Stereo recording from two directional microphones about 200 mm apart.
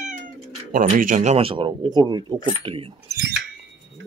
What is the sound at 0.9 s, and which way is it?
Speech, 40° right (ahead or behind).